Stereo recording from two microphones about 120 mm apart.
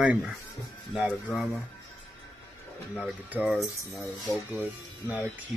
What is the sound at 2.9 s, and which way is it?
Speech, 10° right (ahead or behind).